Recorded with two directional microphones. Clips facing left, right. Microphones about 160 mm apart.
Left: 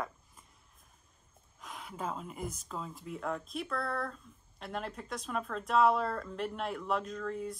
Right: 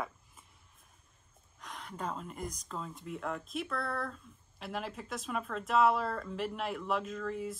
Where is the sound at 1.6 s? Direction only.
5° left (ahead or behind).